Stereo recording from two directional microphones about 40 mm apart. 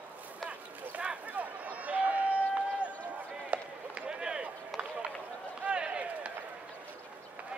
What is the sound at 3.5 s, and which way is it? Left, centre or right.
Run, right.